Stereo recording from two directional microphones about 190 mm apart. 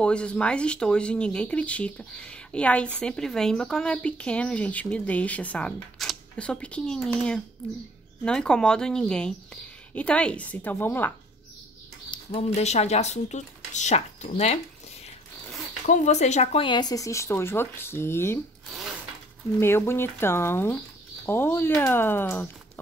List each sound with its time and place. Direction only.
0.0 s speech: 5° left (ahead or behind)
12.1 s speech: 30° left (ahead or behind)
15.8 s speech: 40° left (ahead or behind)
16.6 s speech: 20° left (ahead or behind)
19.6 s speech: 10° left (ahead or behind)